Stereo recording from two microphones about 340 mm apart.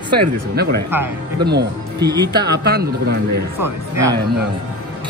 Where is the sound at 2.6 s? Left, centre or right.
Right.